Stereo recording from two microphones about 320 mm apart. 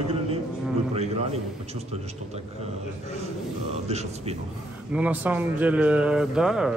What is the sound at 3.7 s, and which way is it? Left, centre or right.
Speech, centre.